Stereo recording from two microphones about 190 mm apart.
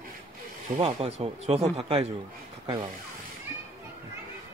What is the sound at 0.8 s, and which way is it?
A man's voice, 30° right (ahead or behind).